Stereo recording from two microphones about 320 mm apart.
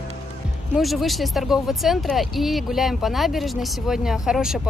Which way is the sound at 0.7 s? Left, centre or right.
Centre.